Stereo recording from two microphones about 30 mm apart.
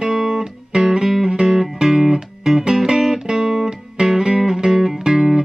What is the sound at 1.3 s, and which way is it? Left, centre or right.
Music, right.